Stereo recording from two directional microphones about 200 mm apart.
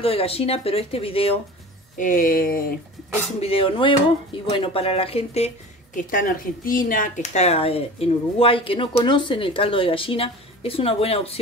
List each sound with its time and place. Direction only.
0.0 s speech: 30° left (ahead or behind)
2.0 s speech: 45° left (ahead or behind)
3.3 s speech: 30° left (ahead or behind)
5.9 s speech: 45° left (ahead or behind)